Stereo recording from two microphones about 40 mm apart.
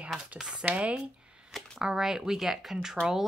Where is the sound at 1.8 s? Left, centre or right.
Centre.